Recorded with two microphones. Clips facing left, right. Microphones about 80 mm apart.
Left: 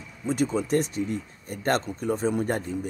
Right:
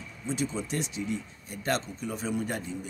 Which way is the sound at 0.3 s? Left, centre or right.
Left.